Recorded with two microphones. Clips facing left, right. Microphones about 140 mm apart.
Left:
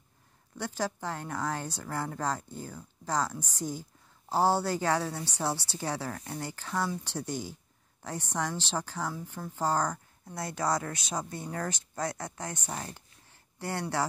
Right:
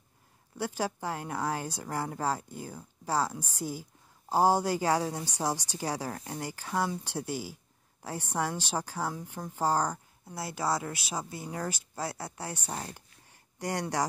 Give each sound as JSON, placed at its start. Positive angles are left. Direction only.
{"t": 0.6, "sound": "speech", "side_deg": -10}
{"t": 6.0, "sound": "speech", "side_deg": -35}
{"t": 6.4, "sound": "speech", "side_deg": -10}
{"t": 12.0, "sound": "speech", "side_deg": -30}
{"t": 13.6, "sound": "speech", "side_deg": -15}